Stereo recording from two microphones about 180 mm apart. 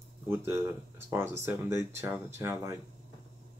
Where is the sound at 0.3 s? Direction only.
15° right (ahead or behind).